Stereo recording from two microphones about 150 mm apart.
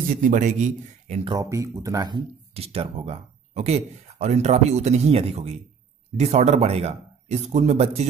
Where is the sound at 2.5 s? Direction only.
40° right (ahead or behind).